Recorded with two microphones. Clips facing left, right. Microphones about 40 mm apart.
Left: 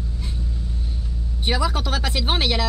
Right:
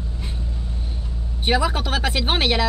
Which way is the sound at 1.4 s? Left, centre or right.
Right.